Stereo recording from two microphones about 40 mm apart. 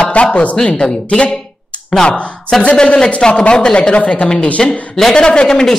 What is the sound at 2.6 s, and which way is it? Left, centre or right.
Speech, left.